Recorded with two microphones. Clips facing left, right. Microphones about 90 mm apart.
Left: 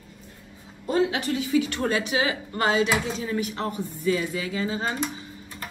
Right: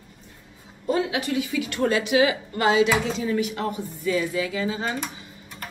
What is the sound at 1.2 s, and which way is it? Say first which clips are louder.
Speech: left 2 dB; 35° left (ahead or behind).